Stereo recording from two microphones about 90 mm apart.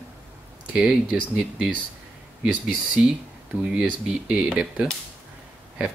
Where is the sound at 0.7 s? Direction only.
5° right (ahead or behind).